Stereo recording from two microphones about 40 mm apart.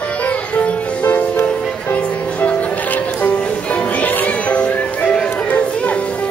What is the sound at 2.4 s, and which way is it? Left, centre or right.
Music, left.